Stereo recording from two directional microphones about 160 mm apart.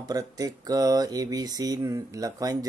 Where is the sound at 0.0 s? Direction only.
25° right (ahead or behind).